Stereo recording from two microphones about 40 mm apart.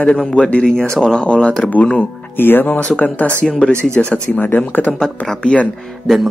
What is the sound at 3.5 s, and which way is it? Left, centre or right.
Speech, left.